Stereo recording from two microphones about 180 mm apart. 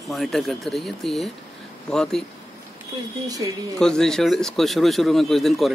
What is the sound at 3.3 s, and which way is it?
Speech, 20° right (ahead or behind).